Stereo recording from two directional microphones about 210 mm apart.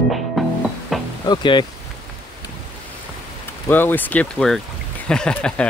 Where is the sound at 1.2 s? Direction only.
20° left (ahead or behind).